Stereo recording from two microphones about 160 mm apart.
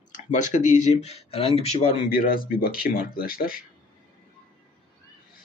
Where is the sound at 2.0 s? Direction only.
65° left (ahead or behind).